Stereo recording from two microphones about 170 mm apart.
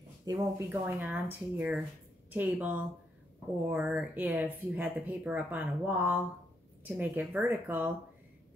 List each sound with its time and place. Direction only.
0.2 s speech: 25° right (ahead or behind)
0.7 s speech: 10° right (ahead or behind)